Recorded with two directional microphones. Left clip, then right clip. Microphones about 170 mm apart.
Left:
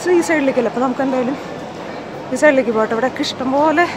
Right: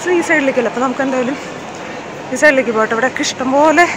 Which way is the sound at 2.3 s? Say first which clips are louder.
Right 2 dB; 10° left (ahead or behind).